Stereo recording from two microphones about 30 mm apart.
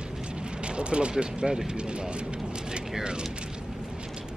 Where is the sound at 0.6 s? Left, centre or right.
Right.